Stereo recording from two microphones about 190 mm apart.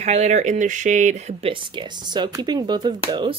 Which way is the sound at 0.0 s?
35° right (ahead or behind).